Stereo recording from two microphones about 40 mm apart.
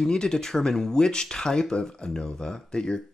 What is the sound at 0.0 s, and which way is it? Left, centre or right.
Speech, centre.